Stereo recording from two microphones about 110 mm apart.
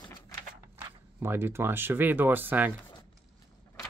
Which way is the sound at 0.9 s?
20° right (ahead or behind).